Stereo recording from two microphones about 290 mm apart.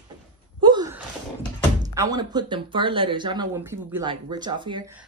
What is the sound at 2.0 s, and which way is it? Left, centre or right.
Speech, centre.